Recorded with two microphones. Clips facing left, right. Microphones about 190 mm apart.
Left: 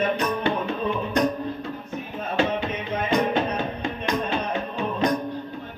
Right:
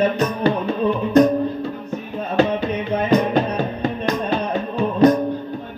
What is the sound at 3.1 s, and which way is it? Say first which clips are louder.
Music: right 4 dB; 40° right (ahead or behind).